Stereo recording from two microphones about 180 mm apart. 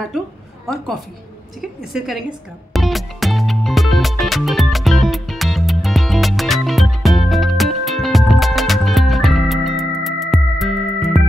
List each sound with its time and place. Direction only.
1.6 s a woman's voice: centre (ahead or behind)
2.7 s music: centre (ahead or behind)